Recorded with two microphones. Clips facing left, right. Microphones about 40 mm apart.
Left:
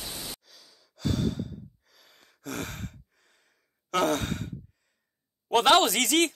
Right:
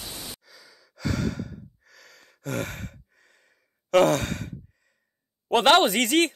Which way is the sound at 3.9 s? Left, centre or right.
Right.